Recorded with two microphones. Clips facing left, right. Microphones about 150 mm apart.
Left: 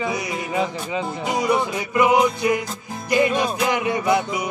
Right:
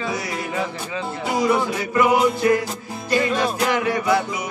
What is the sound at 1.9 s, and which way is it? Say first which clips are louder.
Speech: even; 15° left (ahead or behind).